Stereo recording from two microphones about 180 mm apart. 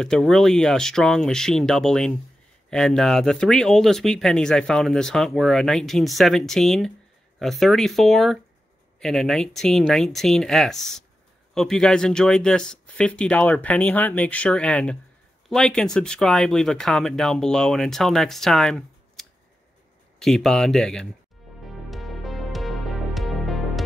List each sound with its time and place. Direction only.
0.0 s speech: centre (ahead or behind)
21.6 s music: centre (ahead or behind)